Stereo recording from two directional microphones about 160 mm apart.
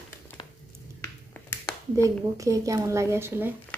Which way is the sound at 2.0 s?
20° right (ahead or behind).